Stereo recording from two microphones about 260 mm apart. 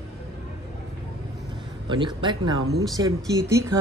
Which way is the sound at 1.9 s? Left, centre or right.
Centre.